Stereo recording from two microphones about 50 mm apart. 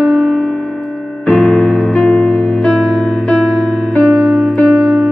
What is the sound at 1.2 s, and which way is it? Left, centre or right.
Electric piano, left.